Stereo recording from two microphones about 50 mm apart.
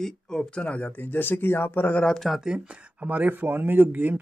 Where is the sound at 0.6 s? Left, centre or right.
Left.